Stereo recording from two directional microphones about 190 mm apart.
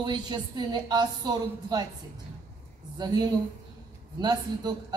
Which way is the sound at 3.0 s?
20° right (ahead or behind).